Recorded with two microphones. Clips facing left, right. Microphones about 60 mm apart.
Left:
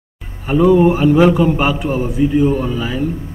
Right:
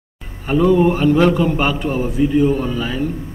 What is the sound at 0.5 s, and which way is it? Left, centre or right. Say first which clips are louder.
A man's voice: left 3 dB; centre.